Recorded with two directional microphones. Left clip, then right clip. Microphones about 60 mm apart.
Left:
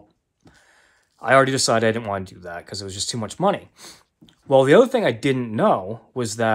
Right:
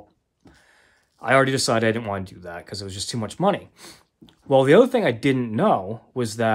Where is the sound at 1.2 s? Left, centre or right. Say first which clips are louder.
Left 2 dB; right.